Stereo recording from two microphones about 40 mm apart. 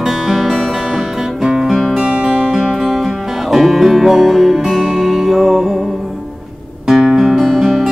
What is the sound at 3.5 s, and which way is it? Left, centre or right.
Music, centre.